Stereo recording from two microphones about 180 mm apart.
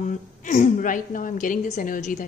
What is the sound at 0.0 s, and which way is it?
A woman's voice, 45° left (ahead or behind).